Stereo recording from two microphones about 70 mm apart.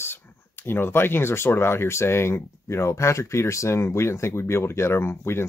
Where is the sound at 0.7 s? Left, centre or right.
Left.